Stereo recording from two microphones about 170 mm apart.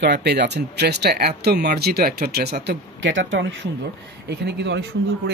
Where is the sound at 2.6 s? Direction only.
90° right.